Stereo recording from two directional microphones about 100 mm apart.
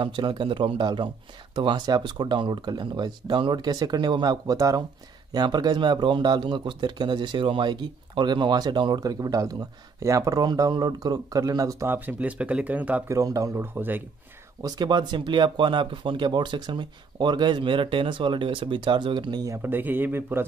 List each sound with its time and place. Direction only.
0.0 s speech: 55° right (ahead or behind); by 11.9 s 35° right (ahead or behind)
11.9 s speech: 20° right (ahead or behind)
13.1 s speech: 35° right (ahead or behind)
14.6 s speech: 45° right (ahead or behind)
19.4 s speech: 25° right (ahead or behind)